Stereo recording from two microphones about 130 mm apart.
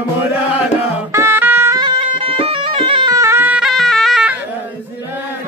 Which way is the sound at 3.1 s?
20° right (ahead or behind).